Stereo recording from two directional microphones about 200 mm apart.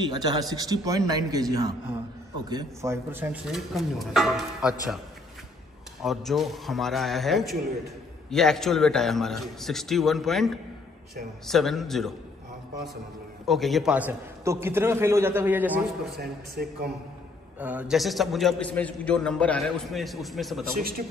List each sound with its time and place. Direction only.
0.0 s a man's voice: 20° right (ahead or behind); by 4.7 s centre (ahead or behind)
6.0 s a man's voice: centre (ahead or behind)
13.5 s a man's voice: centre (ahead or behind)
16.2 s speech: 55° right (ahead or behind)
17.6 s a man's voice: 5° right (ahead or behind)